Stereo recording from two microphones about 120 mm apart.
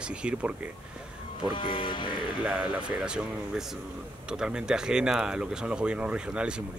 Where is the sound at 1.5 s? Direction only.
45° left (ahead or behind).